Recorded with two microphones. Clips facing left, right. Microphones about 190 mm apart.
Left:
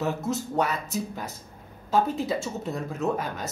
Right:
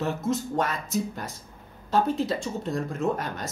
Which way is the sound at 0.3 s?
5° left (ahead or behind).